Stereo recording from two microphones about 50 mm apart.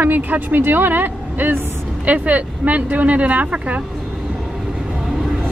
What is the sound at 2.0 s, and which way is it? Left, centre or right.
Speech, right.